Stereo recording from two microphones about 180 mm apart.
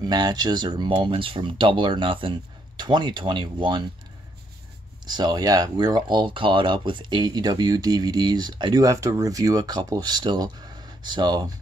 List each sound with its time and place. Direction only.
0.0 s speech: 25° right (ahead or behind)
5.0 s speech: 25° right (ahead or behind)